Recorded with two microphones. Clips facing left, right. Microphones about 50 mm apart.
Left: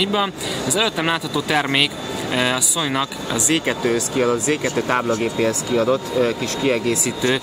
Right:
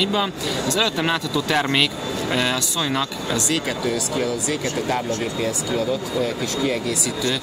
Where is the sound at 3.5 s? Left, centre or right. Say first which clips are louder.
Left 7 dB; left.